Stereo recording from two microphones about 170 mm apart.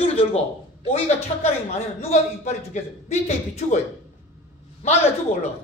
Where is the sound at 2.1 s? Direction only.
45° left (ahead or behind).